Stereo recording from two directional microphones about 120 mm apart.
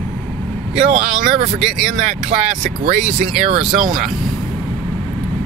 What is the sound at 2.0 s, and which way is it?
Speech, 80° right.